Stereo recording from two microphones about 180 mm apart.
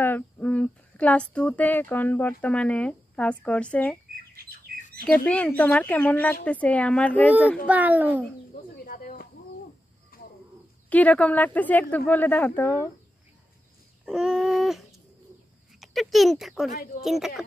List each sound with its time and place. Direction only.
0.0 s speech: 10° left (ahead or behind)
4.7 s bird: 55° right (ahead or behind)
5.0 s speech: 5° left (ahead or behind)
7.6 s a child's voice: 10° right (ahead or behind)
8.7 s snake: 55° left (ahead or behind)
10.1 s a sound: 55° left (ahead or behind)
10.9 s speech: 10° left (ahead or behind)
14.0 s a sound: 5° right (ahead or behind)
15.8 s speech: centre (ahead or behind)